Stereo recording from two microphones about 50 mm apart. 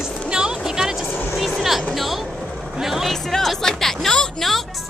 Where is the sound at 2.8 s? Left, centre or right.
Centre.